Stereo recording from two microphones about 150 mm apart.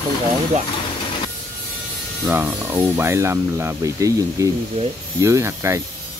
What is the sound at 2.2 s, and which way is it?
Speech, 15° right (ahead or behind).